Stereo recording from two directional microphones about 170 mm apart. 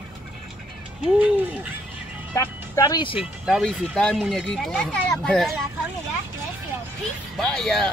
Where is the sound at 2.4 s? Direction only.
20° left (ahead or behind).